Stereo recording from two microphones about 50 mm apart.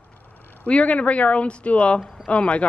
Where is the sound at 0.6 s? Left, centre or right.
Left.